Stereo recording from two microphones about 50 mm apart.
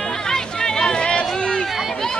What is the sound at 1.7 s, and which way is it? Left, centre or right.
Run, centre.